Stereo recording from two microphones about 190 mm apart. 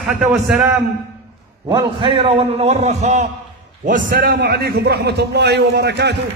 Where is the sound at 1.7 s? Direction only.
25° right (ahead or behind); by 6.1 s 60° right (ahead or behind).